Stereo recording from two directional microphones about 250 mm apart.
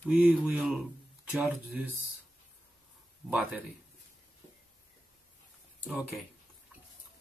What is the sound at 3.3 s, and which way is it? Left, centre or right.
Speech, centre.